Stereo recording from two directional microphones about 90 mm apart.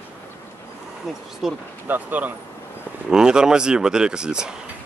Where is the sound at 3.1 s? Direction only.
10° right (ahead or behind).